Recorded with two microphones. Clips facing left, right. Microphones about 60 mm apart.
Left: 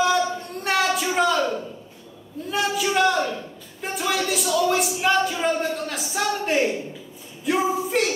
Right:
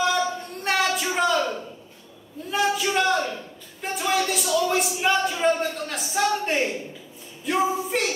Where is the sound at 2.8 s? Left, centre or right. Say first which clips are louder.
Left 2 dB; centre.